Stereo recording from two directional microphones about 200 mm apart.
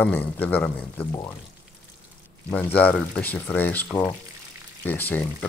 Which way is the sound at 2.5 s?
5° left (ahead or behind).